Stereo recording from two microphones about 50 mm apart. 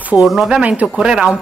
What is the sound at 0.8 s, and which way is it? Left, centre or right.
Speech, centre.